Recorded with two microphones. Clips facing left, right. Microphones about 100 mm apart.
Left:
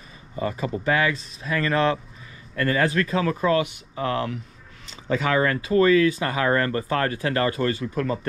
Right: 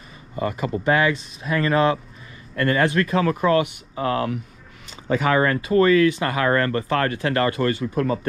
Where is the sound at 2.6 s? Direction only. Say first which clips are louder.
Right 2 dB; 45° right (ahead or behind).